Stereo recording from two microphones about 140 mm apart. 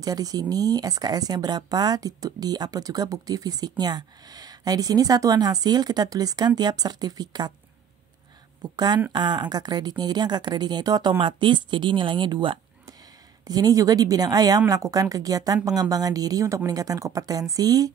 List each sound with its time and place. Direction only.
0.0 s speech: 25° right (ahead or behind)
8.7 s speech: 30° right (ahead or behind)